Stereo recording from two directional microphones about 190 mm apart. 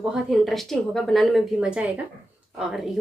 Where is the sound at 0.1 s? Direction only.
Centre (ahead or behind).